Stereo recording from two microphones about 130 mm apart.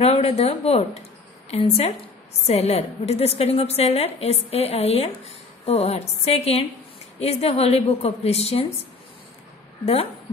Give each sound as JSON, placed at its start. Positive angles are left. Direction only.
{"t": 0.0, "sound": "a woman's voice", "side_deg": 50}